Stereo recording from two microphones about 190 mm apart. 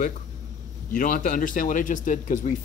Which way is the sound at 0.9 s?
50° left (ahead or behind).